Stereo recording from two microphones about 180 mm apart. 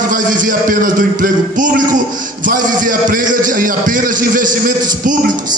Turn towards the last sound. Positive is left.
turn(degrees=-45)  # may be behind; listen again after turning